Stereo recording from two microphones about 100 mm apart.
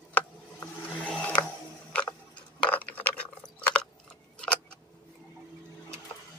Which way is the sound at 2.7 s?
15° left (ahead or behind).